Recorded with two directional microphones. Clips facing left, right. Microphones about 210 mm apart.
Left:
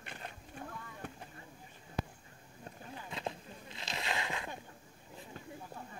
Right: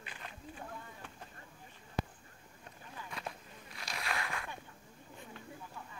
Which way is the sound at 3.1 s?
25° left (ahead or behind).